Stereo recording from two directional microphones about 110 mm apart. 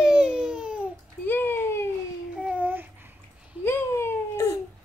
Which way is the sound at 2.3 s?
10° right (ahead or behind).